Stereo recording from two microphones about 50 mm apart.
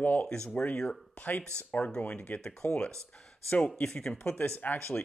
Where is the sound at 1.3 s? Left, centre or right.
Left.